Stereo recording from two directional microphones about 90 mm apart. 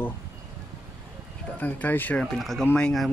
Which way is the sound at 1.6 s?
20° left (ahead or behind).